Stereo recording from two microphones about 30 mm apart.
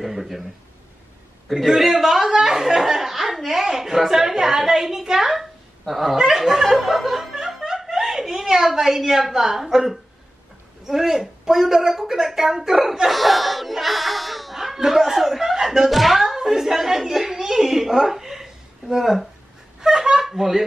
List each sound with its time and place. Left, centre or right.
0.0 s a sound: centre
1.8 s a sound: centre
3.7 s speech: centre
6.1 s speech: centre
7.2 s snicker: centre
8.4 s a woman's voice: centre
13.0 s speech: centre
16.0 s a sound: centre
16.3 s a woman's voice: centre
20.2 s speech: centre